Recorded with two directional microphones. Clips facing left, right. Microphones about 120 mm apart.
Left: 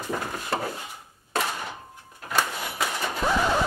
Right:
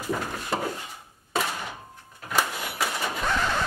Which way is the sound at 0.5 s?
Centre (ahead or behind).